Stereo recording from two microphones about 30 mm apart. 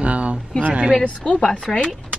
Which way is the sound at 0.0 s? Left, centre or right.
Right.